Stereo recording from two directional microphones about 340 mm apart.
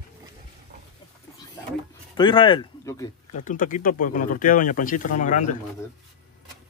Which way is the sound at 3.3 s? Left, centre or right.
Left.